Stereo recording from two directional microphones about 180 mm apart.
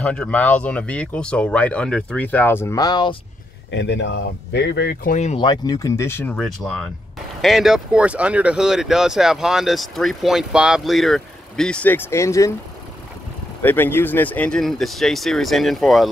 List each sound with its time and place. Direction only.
0.0 s speech: 5° left (ahead or behind); by 3.2 s 25° left (ahead or behind)
3.7 s speech: 80° left
5.0 s speech: 40° left (ahead or behind)
5.4 s speech: 25° left (ahead or behind)
6.3 s speech: centre (ahead or behind)
13.6 s speech: 10° left (ahead or behind)